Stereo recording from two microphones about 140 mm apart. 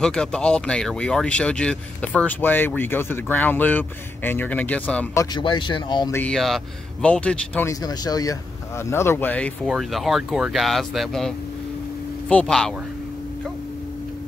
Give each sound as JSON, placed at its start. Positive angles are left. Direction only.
{"t": 0.0, "sound": "speech", "side_deg": 5}
{"t": 5.1, "sound": "speech", "side_deg": 25}
{"t": 5.4, "sound": "speech", "side_deg": 35}
{"t": 6.1, "sound": "speech", "side_deg": 5}
{"t": 7.8, "sound": "speech", "side_deg": 30}
{"t": 9.7, "sound": "speech", "side_deg": 0}